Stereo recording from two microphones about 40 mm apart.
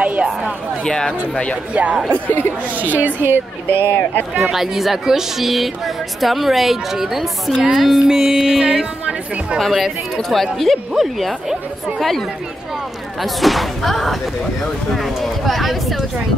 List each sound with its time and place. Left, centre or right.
0.0 s a sound: right
0.8 s speech: centre
1.7 s speech: right
2.8 s a woman's voice: right
3.3 s speech: right
4.4 s speech: centre
7.6 s music: centre
9.6 s speech: centre
13.2 s speech: centre